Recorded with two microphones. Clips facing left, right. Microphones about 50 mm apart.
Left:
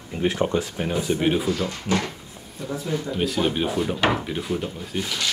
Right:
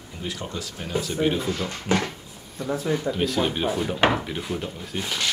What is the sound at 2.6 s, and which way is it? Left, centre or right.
Speech, right.